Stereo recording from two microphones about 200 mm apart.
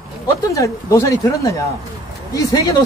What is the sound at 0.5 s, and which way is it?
Speech, 15° left (ahead or behind).